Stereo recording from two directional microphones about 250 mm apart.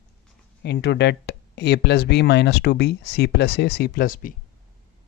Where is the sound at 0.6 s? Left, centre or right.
Left.